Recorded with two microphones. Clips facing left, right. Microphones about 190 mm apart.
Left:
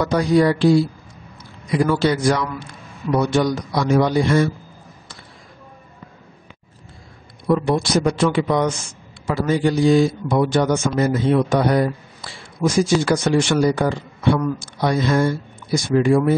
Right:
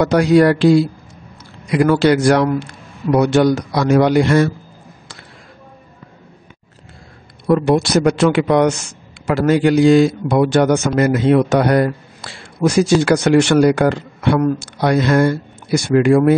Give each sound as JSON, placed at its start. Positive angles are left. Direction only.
{"t": 0.0, "sound": "speech", "side_deg": -75}
{"t": 1.7, "sound": "speech", "side_deg": -75}
{"t": 7.4, "sound": "speech", "side_deg": -75}